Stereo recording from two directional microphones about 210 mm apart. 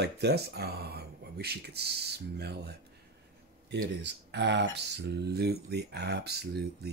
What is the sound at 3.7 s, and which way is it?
Speech, 55° right (ahead or behind).